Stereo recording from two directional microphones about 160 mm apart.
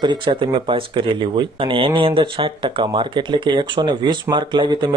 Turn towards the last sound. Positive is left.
turn(degrees=-30)  # may be behind; listen again after turning